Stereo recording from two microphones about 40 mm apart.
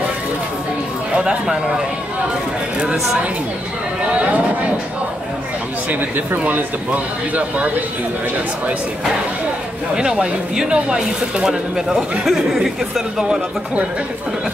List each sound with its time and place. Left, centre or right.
1.1 s speech: centre
5.9 s speech: right
9.9 s speech: centre
11.4 s speech: centre